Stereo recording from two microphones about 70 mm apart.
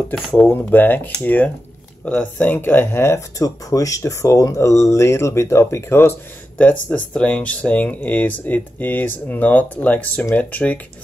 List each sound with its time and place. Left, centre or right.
0.3 s speech: left
3.4 s speech: left
6.6 s speech: left